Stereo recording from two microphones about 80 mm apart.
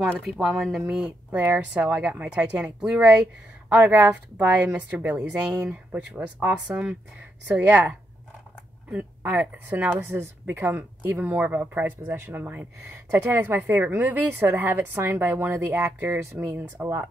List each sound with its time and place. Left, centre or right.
0.3 s speech: centre
0.7 s speech: centre
3.9 s speech: right
5.9 s speech: right
6.2 s speech: centre